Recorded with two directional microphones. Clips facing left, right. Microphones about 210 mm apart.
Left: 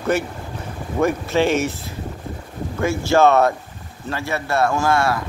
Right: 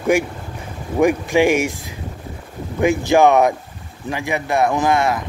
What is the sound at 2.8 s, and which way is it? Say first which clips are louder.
Speech: right 2 dB; 15° right (ahead or behind).